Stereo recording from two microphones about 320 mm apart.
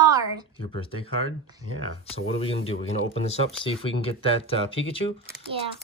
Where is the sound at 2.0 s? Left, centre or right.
Centre.